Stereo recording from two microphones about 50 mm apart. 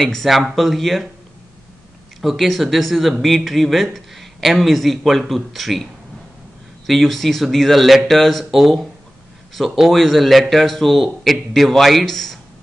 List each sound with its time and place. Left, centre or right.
0.0 s speech: centre
2.2 s speech: centre
6.9 s speech: centre